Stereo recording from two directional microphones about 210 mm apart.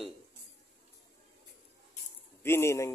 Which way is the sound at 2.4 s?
10° left (ahead or behind).